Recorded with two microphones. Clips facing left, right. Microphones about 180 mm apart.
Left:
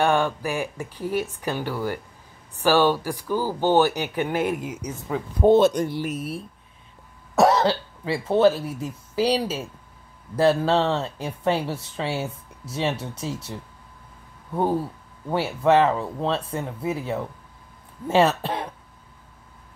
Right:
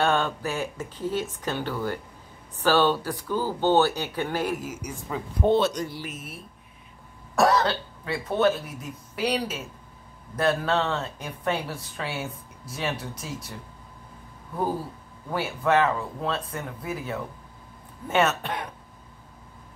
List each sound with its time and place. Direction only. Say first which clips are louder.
0.0 s speech: left 3 dB; 15° left (ahead or behind)
5.4 s speech: left 6 dB; 45° left (ahead or behind)
6.1 s speech: left 10 dB; 35° left (ahead or behind)
15.3 s speech: left 4 dB; 30° left (ahead or behind)